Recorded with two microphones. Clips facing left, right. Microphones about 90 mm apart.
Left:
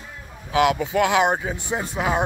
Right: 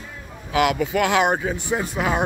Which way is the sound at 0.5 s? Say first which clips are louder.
Even; 25° left (ahead or behind).